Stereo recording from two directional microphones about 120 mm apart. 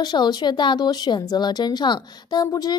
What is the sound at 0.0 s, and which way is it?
Speech, 35° left (ahead or behind).